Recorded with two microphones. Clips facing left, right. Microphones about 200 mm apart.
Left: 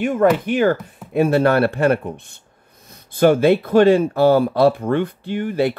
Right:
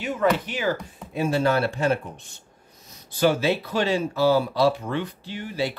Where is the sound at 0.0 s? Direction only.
50° left (ahead or behind).